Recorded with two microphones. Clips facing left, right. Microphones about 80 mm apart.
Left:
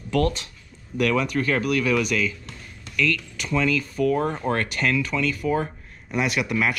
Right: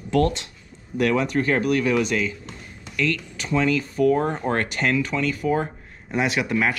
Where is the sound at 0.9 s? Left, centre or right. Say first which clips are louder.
Right 1 dB; right.